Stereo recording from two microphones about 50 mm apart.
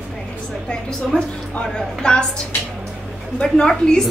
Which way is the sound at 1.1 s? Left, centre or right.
Centre.